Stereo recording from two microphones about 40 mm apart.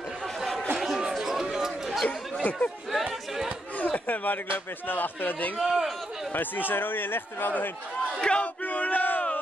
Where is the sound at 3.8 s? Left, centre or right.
Left.